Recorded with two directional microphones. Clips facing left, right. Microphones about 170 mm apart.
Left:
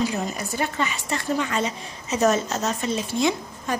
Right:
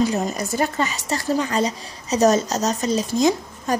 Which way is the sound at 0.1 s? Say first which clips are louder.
Right 5 dB; 40° right (ahead or behind).